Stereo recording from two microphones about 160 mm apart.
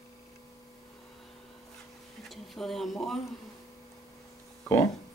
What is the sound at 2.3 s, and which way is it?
Speech, centre (ahead or behind).